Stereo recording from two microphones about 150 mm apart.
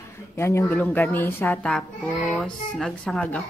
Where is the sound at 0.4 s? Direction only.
20° left (ahead or behind).